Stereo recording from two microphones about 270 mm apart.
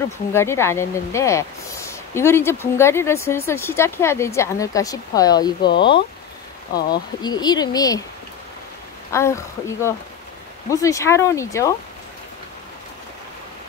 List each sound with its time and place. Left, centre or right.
0.3 s speech: centre
7.2 s speech: centre
9.1 s speech: centre